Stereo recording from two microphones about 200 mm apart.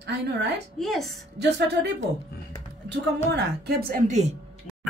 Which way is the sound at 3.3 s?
55° right (ahead or behind).